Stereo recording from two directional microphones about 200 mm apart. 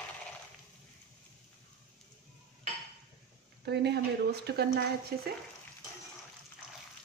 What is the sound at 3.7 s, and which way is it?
Speech, 55° right (ahead or behind).